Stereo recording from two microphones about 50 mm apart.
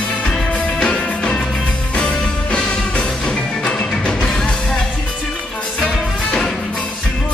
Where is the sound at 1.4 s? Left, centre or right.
Centre.